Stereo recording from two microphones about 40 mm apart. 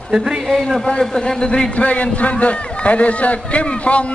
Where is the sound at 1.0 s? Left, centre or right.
Centre.